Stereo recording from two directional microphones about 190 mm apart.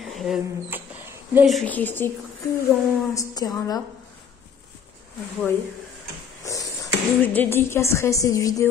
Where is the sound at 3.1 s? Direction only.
20° left (ahead or behind).